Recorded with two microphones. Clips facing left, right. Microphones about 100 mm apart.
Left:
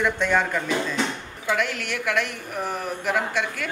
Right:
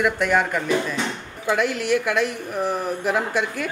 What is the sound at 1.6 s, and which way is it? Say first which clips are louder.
A woman's voice: right 6 dB; 35° right (ahead or behind).